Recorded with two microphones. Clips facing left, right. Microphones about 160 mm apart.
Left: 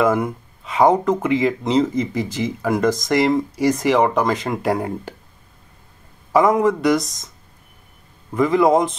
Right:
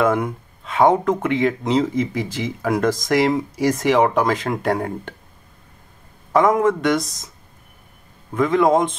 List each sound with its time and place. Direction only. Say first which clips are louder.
0.0 s speech: left 1 dB; centre (ahead or behind)
6.3 s speech: left 1 dB; centre (ahead or behind)
8.3 s speech: left 1 dB; centre (ahead or behind)